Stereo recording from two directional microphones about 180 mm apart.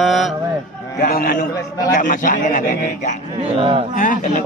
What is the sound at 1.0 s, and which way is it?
Speech, 55° left (ahead or behind).